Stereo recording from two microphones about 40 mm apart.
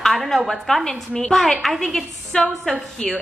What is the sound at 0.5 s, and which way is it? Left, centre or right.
A woman's voice, centre.